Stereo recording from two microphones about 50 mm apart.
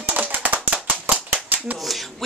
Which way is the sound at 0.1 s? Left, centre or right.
Right.